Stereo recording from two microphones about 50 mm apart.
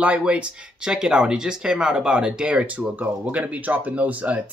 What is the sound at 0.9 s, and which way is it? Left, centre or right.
Speech, centre.